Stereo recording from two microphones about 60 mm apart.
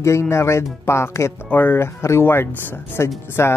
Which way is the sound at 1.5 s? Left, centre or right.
Left.